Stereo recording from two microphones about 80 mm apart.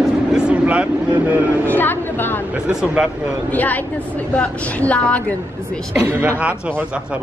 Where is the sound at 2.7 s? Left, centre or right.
Centre.